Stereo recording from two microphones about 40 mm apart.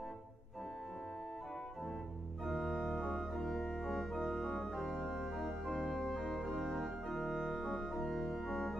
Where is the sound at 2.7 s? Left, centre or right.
Centre.